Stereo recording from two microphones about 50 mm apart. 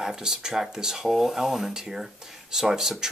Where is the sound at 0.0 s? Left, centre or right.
Centre.